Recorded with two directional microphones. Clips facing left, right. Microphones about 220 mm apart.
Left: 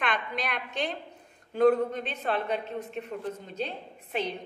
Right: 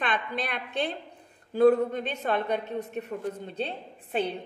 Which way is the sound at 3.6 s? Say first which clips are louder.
Right 1 dB; 35° right (ahead or behind).